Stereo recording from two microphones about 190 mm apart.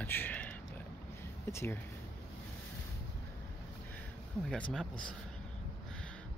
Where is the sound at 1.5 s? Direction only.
15° left (ahead or behind).